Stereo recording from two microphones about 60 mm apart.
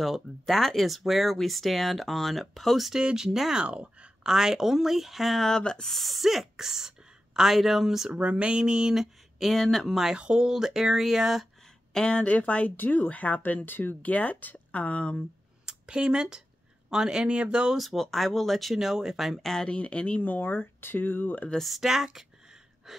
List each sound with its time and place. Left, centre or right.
0.0 s speech: centre
3.6 s a sound: centre
4.3 s speech: centre
8.1 s speech: right; by 9.5 s centre
9.5 s speech: centre
10.0 s speech: centre
11.9 s speech: centre; by 14.1 s left
14.1 s speech: left
15.6 s speech: centre
17.7 s speech: centre; by 21.5 s left
21.5 s speech: centre
22.8 s gasp: centre